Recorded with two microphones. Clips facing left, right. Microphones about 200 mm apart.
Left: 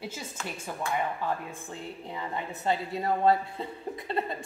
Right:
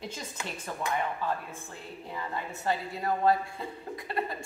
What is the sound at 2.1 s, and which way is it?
A woman's voice, 20° left (ahead or behind).